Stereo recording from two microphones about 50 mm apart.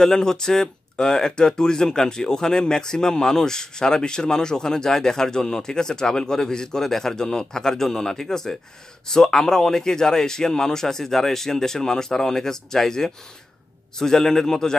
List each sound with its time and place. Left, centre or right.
0.0 s speech: centre